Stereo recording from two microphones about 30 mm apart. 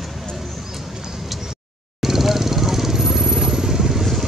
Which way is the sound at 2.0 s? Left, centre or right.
Centre.